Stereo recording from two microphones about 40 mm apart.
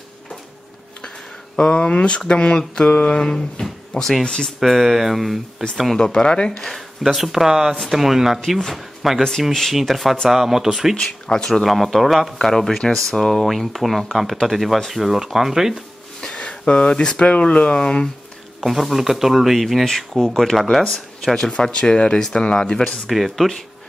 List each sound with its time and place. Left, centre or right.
1.6 s speech: left
3.2 s speech: centre
4.6 s speech: centre
5.9 s speech: centre
6.6 s speech: centre
9.5 s speech: centre
11.0 s speech: centre
11.6 s speech: centre
16.3 s speech: left
18.6 s speech: centre
19.8 s speech: centre
21.5 s speech: left
23.0 s speech: centre